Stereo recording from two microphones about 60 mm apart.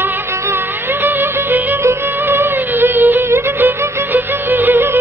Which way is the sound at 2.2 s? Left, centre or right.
Right.